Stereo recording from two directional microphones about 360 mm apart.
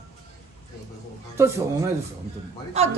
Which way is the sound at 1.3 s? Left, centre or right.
Centre.